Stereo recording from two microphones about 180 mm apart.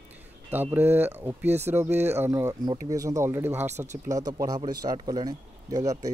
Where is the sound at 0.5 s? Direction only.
10° right (ahead or behind).